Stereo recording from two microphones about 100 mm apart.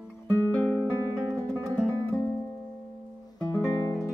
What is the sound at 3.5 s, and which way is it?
Music, 30° left (ahead or behind).